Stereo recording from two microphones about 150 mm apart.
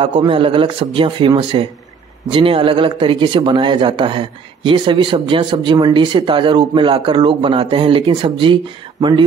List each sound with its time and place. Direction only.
0.3 s a man's voice: 35° right (ahead or behind)